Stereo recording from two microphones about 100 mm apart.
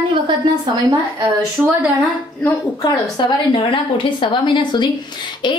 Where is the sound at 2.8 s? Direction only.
45° left (ahead or behind).